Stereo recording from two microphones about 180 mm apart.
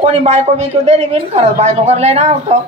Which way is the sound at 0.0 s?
35° right (ahead or behind).